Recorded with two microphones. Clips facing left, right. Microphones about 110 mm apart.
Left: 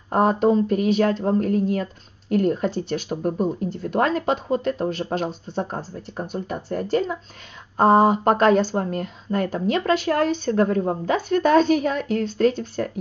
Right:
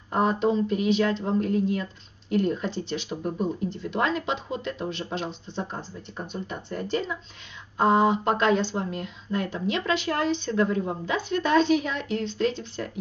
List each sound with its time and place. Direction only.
0.1 s speech: 45° left (ahead or behind)